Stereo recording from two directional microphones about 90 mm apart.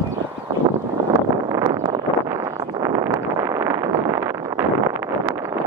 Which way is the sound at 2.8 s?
35° right (ahead or behind).